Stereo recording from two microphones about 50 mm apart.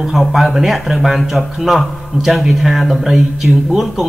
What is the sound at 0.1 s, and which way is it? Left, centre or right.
Speech, centre.